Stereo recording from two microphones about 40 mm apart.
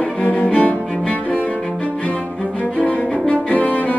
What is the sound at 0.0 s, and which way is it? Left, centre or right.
Cello, left.